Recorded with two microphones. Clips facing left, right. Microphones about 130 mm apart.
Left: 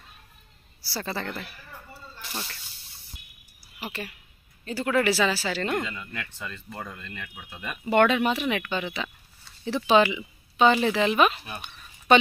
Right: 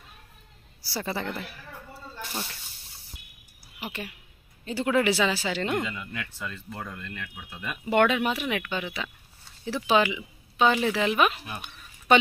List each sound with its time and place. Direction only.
0.8 s speech: 15° right (ahead or behind)
3.8 s speech: 15° right (ahead or behind)